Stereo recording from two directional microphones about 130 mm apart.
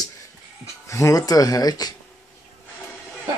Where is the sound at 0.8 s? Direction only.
25° left (ahead or behind).